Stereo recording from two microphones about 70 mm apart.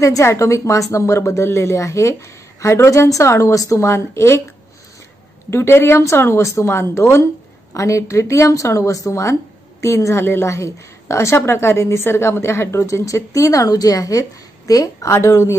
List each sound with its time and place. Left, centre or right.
0.0 s a woman's voice: left
5.5 s a woman's voice: left